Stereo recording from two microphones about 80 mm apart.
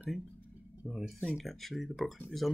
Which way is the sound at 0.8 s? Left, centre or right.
Centre.